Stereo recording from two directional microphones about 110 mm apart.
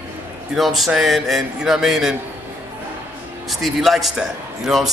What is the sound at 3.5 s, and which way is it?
A man's voice, centre (ahead or behind).